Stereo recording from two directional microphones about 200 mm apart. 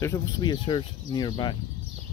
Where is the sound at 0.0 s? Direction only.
20° left (ahead or behind).